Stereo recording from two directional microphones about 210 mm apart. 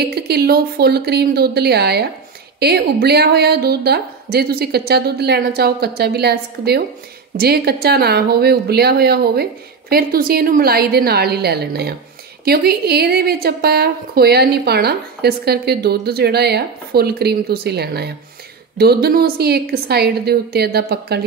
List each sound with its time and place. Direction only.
0.0 s a woman's voice: 50° right (ahead or behind)